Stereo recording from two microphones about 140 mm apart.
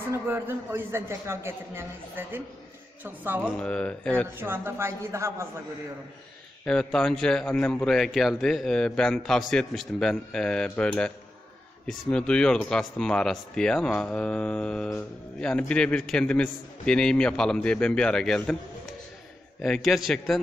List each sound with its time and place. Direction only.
0.3 s a man's voice: 15° right (ahead or behind)
3.5 s speech: 10° left (ahead or behind)
4.4 s a man's voice: 15° right (ahead or behind)
6.6 s a man's voice: 5° left (ahead or behind)
19.6 s a man's voice: centre (ahead or behind)